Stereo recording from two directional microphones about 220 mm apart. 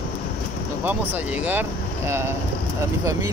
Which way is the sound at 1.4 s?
10° right (ahead or behind).